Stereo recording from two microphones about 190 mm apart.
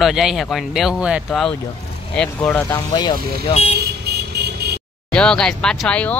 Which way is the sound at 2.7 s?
25° left (ahead or behind).